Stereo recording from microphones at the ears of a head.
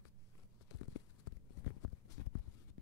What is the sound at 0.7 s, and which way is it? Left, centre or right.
Clip-clop, left.